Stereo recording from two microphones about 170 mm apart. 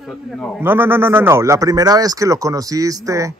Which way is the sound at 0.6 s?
10° right (ahead or behind).